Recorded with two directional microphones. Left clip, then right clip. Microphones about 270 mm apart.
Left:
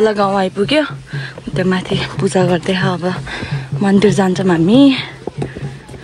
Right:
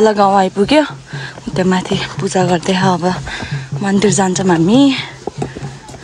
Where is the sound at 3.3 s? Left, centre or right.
Centre.